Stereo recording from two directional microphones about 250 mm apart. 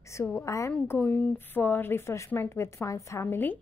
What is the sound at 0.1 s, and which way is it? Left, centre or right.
A woman's voice, centre.